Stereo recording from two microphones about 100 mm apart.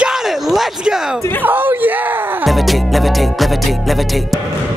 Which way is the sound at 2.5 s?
Centre (ahead or behind).